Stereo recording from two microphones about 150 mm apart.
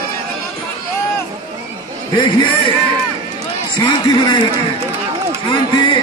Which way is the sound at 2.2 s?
35° left (ahead or behind).